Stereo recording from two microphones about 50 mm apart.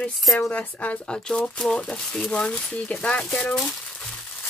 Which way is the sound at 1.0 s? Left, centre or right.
Centre.